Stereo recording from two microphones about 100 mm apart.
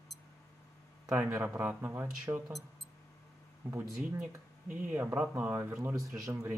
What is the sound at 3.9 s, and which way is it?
Speech, 5° right (ahead or behind).